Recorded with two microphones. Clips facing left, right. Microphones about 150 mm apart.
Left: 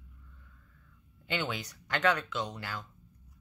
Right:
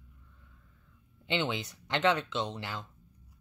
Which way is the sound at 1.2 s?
25° right (ahead or behind).